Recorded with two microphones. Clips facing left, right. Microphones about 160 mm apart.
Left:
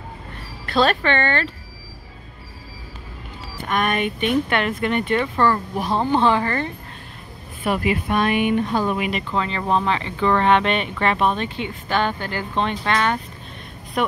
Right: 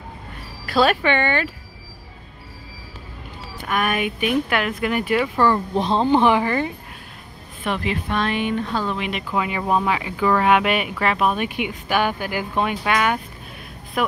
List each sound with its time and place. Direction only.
0.7 s speech: 10° right (ahead or behind)
3.6 s speech: 5° right (ahead or behind)
5.8 s speech: 20° right (ahead or behind)
7.6 s speech: 10° left (ahead or behind)
9.1 s speech: 10° right (ahead or behind)